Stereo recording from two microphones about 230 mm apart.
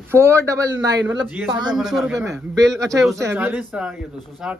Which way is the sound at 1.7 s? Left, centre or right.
Centre.